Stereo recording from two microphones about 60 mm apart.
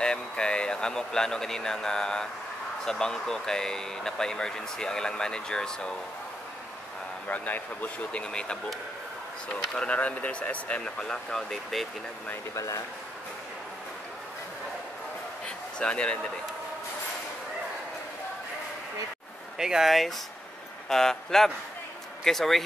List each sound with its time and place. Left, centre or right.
0.0 s speech: centre
7.2 s speech: left
8.1 s speech: centre
12.5 s speech: left
15.4 s a sound: centre
19.6 s speech: centre
20.9 s speech: centre